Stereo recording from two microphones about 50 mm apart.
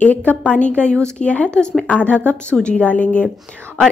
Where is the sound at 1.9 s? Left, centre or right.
Left.